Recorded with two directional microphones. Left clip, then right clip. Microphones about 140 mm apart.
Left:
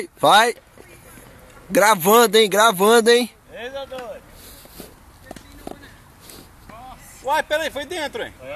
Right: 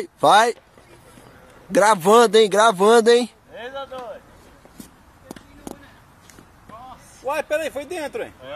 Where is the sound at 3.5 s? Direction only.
45° left (ahead or behind).